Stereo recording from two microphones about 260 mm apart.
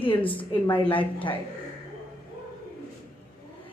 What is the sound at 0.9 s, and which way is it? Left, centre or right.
Speech, centre.